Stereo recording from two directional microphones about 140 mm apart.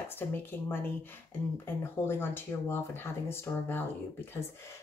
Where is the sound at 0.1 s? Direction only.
15° left (ahead or behind).